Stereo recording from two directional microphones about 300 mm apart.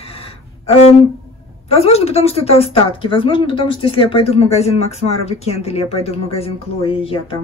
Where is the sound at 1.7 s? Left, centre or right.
Centre.